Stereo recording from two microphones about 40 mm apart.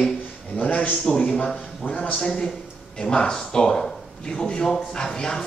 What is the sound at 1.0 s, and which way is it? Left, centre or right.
Speech, left.